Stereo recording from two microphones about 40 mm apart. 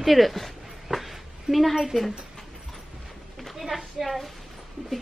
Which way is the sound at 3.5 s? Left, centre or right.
Centre.